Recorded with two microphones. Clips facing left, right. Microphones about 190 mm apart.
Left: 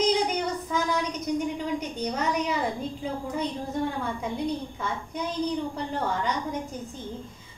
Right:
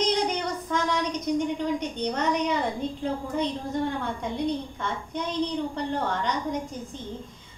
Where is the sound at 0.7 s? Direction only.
5° left (ahead or behind).